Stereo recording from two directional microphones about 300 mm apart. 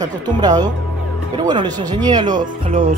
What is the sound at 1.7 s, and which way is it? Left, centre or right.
Speech, centre.